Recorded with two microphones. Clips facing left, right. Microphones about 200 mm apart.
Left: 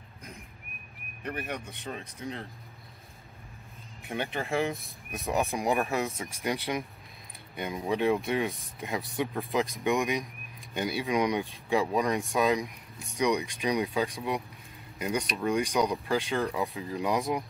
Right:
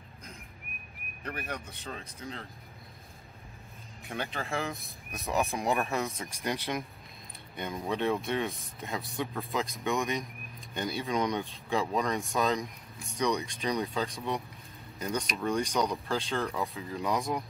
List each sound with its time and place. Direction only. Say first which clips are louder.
1.2 s speech: left 3 dB; 15° left (ahead or behind)
4.1 s speech: left 4 dB; 15° left (ahead or behind)
4.7 s speech: left 3 dB; centre (ahead or behind)
5.5 s speech: left 2 dB; 15° left (ahead or behind)
5.9 s speech: left 2 dB; centre (ahead or behind)
7.5 s speech: left 3 dB; 15° left (ahead or behind)